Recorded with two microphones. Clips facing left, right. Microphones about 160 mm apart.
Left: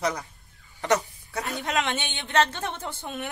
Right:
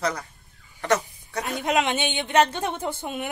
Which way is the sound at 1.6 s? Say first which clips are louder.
Right 5 dB; 15° right (ahead or behind).